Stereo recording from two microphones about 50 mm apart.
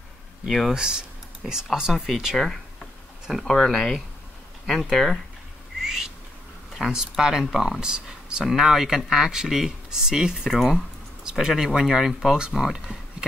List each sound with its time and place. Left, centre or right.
0.5 s speech: centre
0.7 s speech: centre
5.8 s bird: centre
6.9 s speech: centre
10.5 s speech: centre